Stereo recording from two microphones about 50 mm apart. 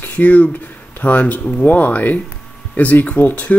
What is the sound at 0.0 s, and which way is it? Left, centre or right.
A man's voice, left.